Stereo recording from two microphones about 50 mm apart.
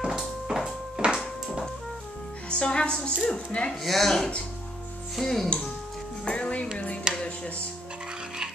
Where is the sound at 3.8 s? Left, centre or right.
Centre.